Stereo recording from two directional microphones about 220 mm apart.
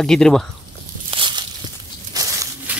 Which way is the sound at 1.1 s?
20° right (ahead or behind).